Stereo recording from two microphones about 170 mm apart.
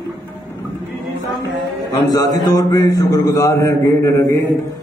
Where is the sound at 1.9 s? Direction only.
25° left (ahead or behind).